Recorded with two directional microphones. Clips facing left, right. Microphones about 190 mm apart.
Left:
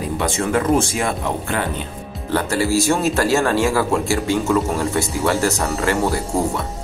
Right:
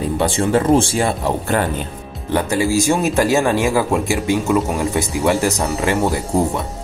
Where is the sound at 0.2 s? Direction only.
30° right (ahead or behind).